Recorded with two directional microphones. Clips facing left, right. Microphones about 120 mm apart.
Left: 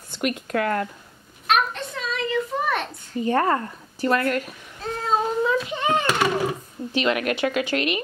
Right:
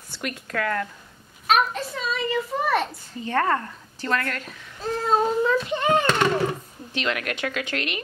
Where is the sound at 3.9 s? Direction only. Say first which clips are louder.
Left 5 dB; 10° left (ahead or behind).